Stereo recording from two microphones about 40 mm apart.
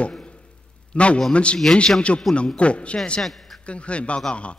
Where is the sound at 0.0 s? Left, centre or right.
Left.